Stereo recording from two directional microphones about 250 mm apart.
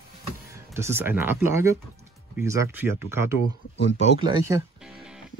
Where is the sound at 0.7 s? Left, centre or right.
Centre.